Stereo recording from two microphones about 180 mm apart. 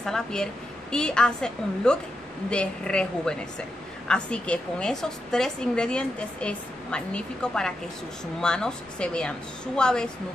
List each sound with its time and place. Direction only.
0.0 s a woman's voice: 5° left (ahead or behind)